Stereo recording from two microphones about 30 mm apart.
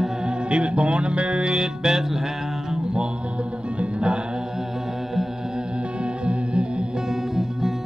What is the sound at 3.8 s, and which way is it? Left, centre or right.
Music, right.